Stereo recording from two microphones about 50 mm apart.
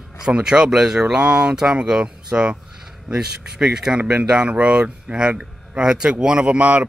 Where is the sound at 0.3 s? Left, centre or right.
Centre.